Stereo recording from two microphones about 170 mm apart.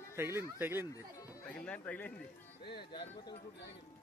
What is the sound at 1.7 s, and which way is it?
Speech, 10° left (ahead or behind).